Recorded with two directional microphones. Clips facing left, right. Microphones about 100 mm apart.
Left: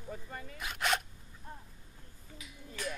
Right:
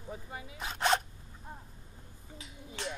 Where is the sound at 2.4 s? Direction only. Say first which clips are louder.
Right 1 dB; 25° right (ahead or behind).